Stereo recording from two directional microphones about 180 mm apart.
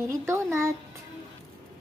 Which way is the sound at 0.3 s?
15° right (ahead or behind).